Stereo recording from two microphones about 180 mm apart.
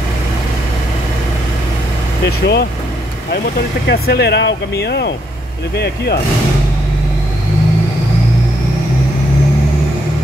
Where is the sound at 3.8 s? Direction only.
65° left (ahead or behind).